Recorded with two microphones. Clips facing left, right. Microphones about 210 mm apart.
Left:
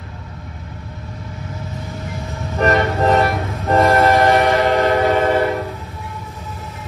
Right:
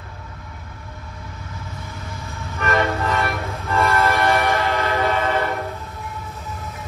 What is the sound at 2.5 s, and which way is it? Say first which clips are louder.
Train: left 5 dB; 40° left (ahead or behind).